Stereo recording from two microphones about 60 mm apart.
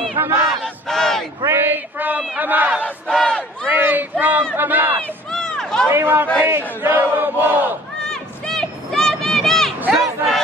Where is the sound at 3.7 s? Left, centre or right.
Right.